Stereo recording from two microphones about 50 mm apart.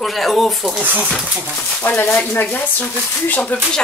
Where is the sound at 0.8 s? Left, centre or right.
Right.